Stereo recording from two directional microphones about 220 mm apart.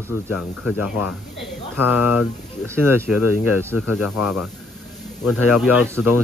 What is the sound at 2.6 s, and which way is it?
Speech, 10° right (ahead or behind).